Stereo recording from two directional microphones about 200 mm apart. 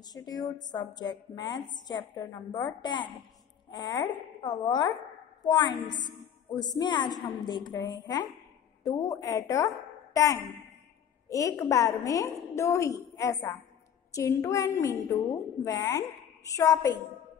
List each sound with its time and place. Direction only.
0.0 s a woman's voice: 20° left (ahead or behind)
6.0 s a woman's voice: 20° left (ahead or behind)